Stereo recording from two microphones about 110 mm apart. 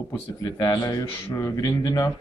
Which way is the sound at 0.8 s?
40° left (ahead or behind).